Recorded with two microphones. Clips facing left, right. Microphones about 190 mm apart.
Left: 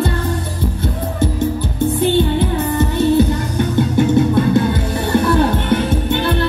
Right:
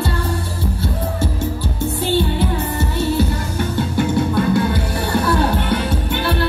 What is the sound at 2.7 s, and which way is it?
Music, 20° left (ahead or behind).